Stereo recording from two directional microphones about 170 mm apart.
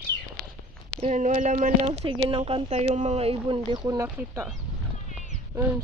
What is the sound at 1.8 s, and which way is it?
Speech, 30° right (ahead or behind).